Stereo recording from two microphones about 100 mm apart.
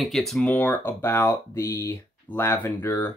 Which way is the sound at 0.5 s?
20° left (ahead or behind).